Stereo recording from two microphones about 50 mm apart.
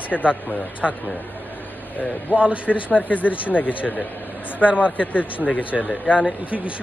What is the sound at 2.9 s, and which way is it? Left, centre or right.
Speech, left.